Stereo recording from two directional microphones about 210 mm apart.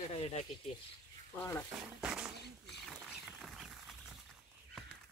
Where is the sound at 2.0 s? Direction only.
5° right (ahead or behind).